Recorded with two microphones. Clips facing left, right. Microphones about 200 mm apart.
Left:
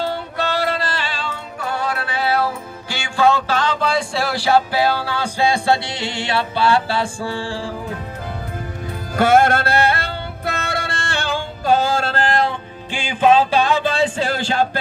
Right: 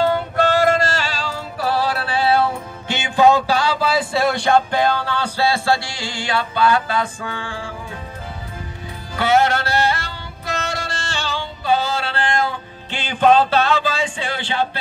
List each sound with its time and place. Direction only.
0.0 s music: 50° right (ahead or behind); by 2.4 s 30° right (ahead or behind)
2.9 s music: 20° right (ahead or behind); by 7.7 s 35° left (ahead or behind)
9.1 s music: 50° left (ahead or behind); by 12.5 s 35° left (ahead or behind)
12.9 s music: 10° left (ahead or behind)
13.9 s a sound: 40° left (ahead or behind)